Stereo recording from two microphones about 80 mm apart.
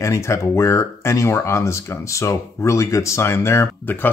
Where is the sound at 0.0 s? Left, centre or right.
Left.